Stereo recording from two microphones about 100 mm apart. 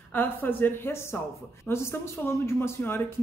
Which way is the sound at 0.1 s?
20° left (ahead or behind).